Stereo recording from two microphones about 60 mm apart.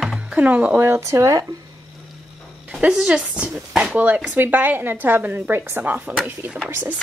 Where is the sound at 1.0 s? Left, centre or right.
Right.